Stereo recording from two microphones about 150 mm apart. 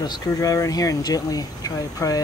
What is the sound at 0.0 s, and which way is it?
Speech, 25° left (ahead or behind).